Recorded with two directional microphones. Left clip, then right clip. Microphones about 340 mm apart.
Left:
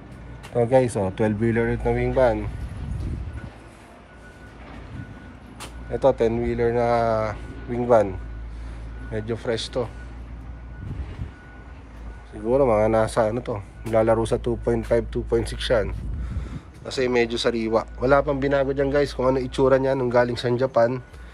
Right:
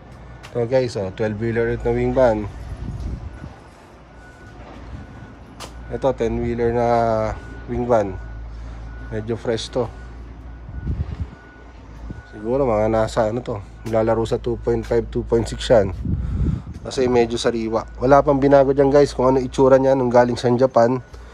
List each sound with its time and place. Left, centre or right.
0.6 s speech: centre
5.9 s speech: centre
12.4 s speech: centre